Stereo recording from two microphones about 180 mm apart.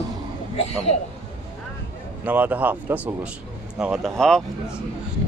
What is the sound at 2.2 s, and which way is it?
Speech, 10° right (ahead or behind).